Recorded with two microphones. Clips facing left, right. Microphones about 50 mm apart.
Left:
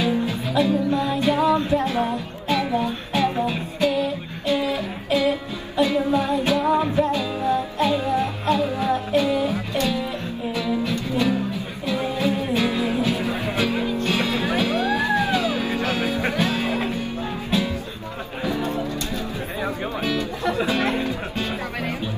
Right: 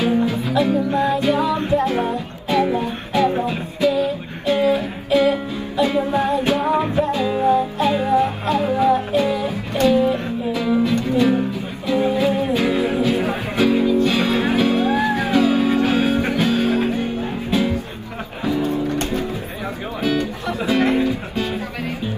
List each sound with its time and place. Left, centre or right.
0.0 s music: right
4.0 s music: right
18.5 s music: left
18.9 s music: right
20.4 s music: left
20.7 s music: right